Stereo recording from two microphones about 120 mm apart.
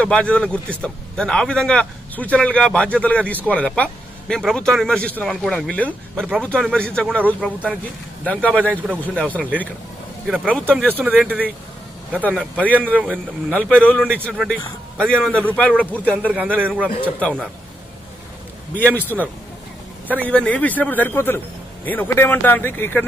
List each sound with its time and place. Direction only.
0.0 s a man's voice: 10° left (ahead or behind)
10.2 s a man's voice: 10° right (ahead or behind)
13.7 s a man's voice: 10° left (ahead or behind)
14.1 s a man's voice: 15° right (ahead or behind)
15.0 s a man's voice: 5° left (ahead or behind)
16.3 s a man's voice: 15° right (ahead or behind)
17.2 s a man's voice: 10° left (ahead or behind)
18.8 s a man's voice: 15° left (ahead or behind)